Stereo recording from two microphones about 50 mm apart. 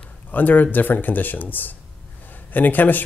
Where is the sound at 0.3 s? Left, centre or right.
Left.